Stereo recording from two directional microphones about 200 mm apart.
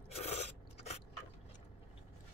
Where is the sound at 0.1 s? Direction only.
30° left (ahead or behind).